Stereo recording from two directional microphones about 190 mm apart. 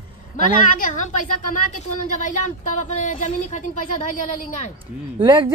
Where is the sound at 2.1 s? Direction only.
40° left (ahead or behind).